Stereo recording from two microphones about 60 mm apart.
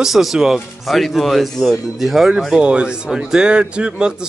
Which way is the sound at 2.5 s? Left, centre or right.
Centre.